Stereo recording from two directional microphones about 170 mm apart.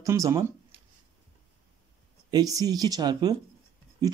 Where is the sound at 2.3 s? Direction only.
20° right (ahead or behind).